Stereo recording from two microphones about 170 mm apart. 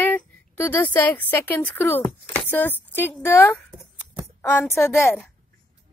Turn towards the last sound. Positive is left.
turn(degrees=15)  # may be behind; listen again after turning